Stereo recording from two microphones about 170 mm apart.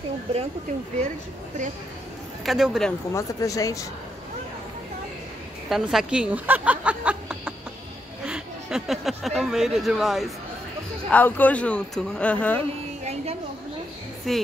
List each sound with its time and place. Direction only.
2.4 s speech: centre (ahead or behind)
3.1 s speech: 20° left (ahead or behind)
5.7 s a woman's voice: centre (ahead or behind)
8.3 s a sound: 5° right (ahead or behind)
9.4 s speech: centre (ahead or behind)
11.1 s speech: 10° left (ahead or behind)
13.0 s a sound: 40° right (ahead or behind)
14.3 s speech: centre (ahead or behind)